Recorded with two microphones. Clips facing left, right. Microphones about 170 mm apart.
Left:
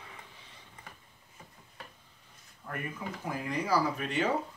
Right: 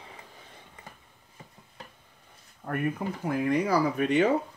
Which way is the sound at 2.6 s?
60° right (ahead or behind).